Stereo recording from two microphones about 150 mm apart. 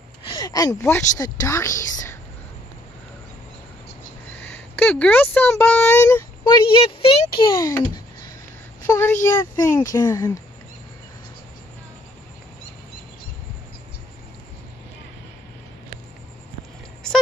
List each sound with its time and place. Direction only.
0.3 s speech: 25° left (ahead or behind)
4.4 s speech: 10° left (ahead or behind)
6.4 s a child's voice: 35° left (ahead or behind)
8.8 s speech: 15° left (ahead or behind)